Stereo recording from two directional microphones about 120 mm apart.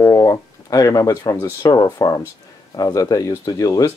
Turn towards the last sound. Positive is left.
turn(degrees=30)  # may be behind; listen again after turning